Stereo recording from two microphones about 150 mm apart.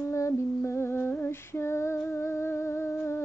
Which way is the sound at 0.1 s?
20° left (ahead or behind).